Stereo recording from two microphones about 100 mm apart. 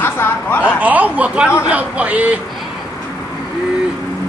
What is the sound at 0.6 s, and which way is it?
Speech, 15° right (ahead or behind).